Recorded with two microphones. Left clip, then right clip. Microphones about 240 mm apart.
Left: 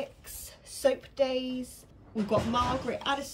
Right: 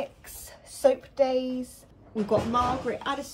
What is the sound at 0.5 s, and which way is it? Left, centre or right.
Speech, centre.